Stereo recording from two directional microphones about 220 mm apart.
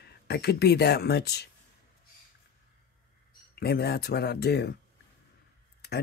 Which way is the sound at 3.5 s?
45° left (ahead or behind).